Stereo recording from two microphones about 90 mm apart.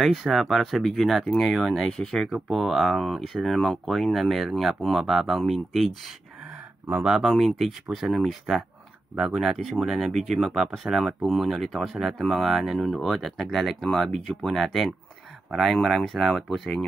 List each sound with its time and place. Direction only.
0.0 s speech: centre (ahead or behind)
6.9 s speech: 5° right (ahead or behind)